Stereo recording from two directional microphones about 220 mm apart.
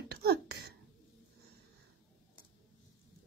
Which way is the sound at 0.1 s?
45° right (ahead or behind).